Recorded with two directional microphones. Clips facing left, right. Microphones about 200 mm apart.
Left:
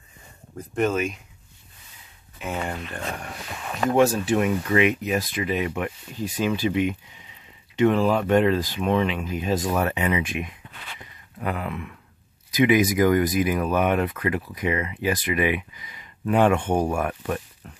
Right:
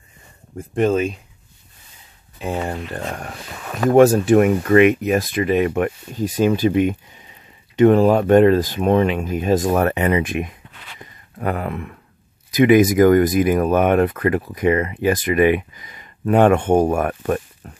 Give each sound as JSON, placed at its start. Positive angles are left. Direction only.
{"t": 0.6, "sound": "speech", "side_deg": -30}
{"t": 2.3, "sound": "a sound", "side_deg": -35}
{"t": 3.9, "sound": "speech", "side_deg": -55}